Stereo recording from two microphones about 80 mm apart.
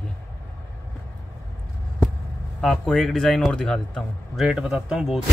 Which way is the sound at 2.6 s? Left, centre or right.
Centre.